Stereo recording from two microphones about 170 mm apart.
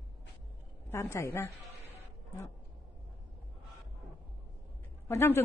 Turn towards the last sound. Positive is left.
turn(degrees=15)  # may be behind; listen again after turning